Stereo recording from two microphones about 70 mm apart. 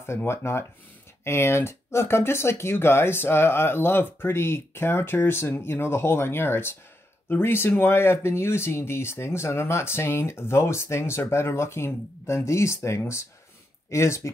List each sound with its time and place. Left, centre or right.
0.0 s speech: left